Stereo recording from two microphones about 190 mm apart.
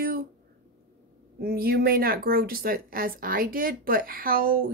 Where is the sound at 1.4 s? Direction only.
55° right (ahead or behind).